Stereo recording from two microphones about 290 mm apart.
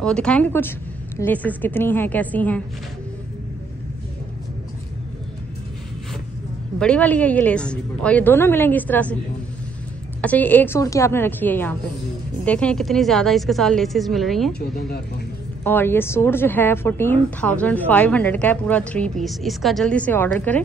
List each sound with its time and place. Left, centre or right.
0.0 s a woman's voice: centre
6.8 s a woman's voice: centre
10.2 s a woman's voice: centre
14.5 s speech: left
15.6 s a woman's voice: centre